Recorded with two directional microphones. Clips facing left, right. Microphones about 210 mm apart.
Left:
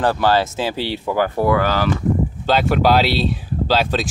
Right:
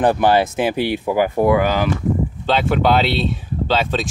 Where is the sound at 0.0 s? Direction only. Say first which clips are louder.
Right 2 dB; 20° right (ahead or behind).